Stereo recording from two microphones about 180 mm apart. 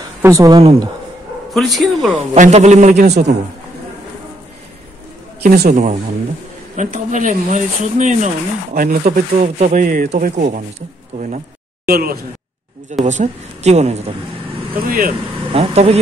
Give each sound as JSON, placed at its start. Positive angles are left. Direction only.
{"t": 0.2, "sound": "speech", "side_deg": -15}
{"t": 0.6, "sound": "a woman's voice", "side_deg": -30}
{"t": 1.5, "sound": "speech", "side_deg": 0}
{"t": 2.3, "sound": "a woman's voice", "side_deg": -40}
{"t": 5.4, "sound": "speech", "side_deg": -55}
{"t": 13.0, "sound": "a woman's voice", "side_deg": -40}
{"t": 14.9, "sound": "speech", "side_deg": -50}
{"t": 15.5, "sound": "a woman's voice", "side_deg": -35}